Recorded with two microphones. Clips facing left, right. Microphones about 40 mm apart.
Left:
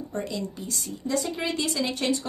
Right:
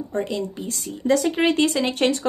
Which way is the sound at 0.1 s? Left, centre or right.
Right.